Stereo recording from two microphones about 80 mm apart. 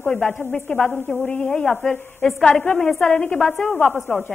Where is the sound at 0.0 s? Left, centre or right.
Centre.